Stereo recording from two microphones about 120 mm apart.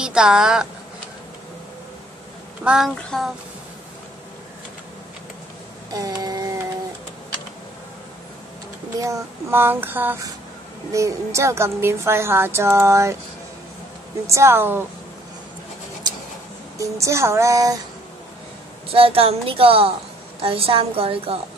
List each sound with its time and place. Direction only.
0.0 s child singing: 5° right (ahead or behind)
2.6 s child singing: 5° right (ahead or behind)
5.9 s a sound: 30° right (ahead or behind)
8.9 s a sound: 30° right (ahead or behind)
10.9 s a woman's voice: 25° right (ahead or behind)
14.2 s a woman's voice: 25° right (ahead or behind)
16.7 s a woman's voice: 25° right (ahead or behind)
18.9 s a woman's voice: 50° right (ahead or behind)